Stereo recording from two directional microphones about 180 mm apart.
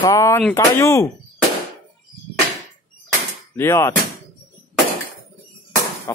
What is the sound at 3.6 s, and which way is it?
Speech, 15° left (ahead or behind).